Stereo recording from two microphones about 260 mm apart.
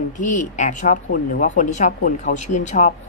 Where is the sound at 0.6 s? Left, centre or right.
Left.